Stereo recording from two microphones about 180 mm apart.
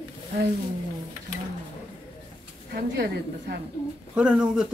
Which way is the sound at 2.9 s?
65° right (ahead or behind).